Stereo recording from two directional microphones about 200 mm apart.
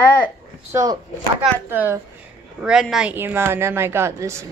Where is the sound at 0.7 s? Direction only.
15° right (ahead or behind).